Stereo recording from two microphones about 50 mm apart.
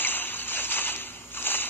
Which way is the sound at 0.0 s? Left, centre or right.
Left.